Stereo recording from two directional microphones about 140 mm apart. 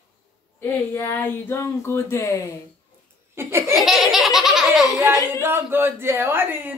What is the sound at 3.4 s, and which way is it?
Speech, 20° right (ahead or behind).